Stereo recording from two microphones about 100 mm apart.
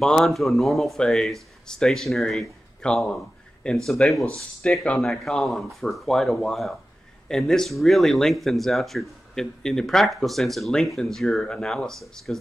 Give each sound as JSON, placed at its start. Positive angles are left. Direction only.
{"t": 0.0, "sound": "speech", "side_deg": 5}